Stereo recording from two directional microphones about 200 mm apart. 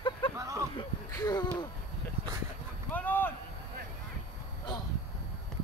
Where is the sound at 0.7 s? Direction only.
20° left (ahead or behind).